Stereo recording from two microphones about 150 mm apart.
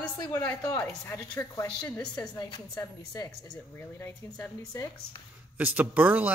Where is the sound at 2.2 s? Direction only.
25° left (ahead or behind).